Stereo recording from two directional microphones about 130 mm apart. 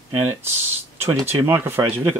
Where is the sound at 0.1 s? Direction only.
20° right (ahead or behind).